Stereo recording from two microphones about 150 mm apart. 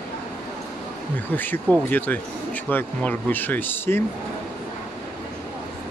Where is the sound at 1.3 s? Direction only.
10° left (ahead or behind).